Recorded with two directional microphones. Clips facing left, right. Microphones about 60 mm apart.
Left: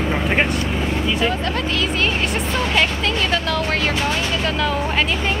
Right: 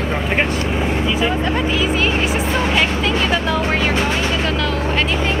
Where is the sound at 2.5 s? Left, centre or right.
Right.